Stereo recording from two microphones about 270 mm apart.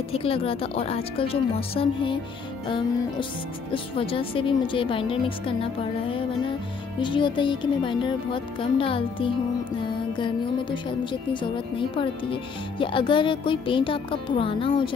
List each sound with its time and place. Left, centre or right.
0.1 s a woman's voice: left
3.7 s a woman's voice: centre